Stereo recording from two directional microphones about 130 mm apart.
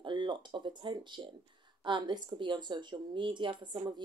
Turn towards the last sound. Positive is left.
turn(degrees=-35)  # may be behind; listen again after turning